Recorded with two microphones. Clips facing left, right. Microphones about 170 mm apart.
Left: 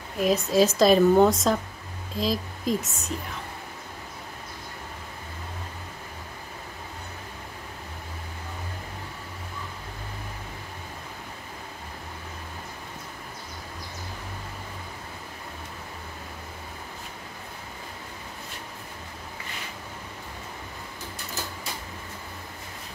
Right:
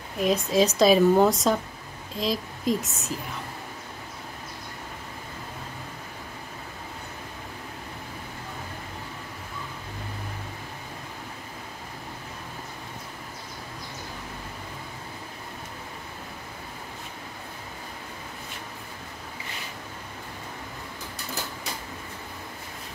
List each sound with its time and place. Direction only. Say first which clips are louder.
0.2 s speech: left 1 dB; centre (ahead or behind)